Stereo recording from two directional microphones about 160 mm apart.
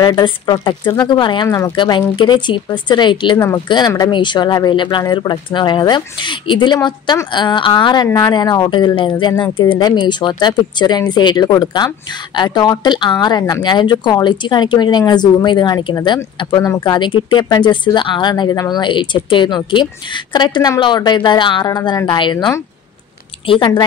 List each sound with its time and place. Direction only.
0.0 s speech: 25° left (ahead or behind)